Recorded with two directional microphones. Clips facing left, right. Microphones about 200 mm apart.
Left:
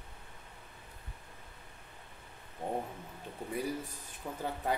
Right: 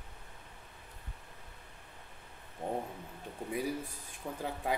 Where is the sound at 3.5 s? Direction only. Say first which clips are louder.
Right 1 dB; 10° right (ahead or behind).